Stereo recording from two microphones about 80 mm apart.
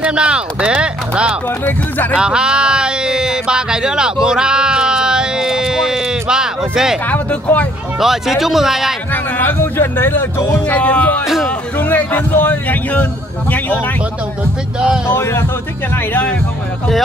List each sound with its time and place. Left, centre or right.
0.0 s speech: centre
1.7 s a man's voice: left
2.1 s a sound: centre
8.0 s speech: centre
9.1 s a man's voice: left
10.8 s music: centre
11.4 s a man's voice: centre
15.0 s speech: left
16.1 s a man's voice: left